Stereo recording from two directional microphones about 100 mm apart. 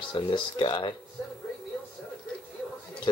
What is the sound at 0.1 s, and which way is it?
Speech, 55° left (ahead or behind).